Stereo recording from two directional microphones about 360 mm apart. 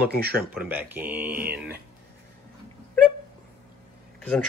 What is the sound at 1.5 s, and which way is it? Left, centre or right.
Speech, right.